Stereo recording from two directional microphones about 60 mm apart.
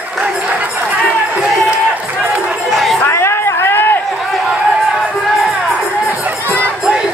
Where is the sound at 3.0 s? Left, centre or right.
Left.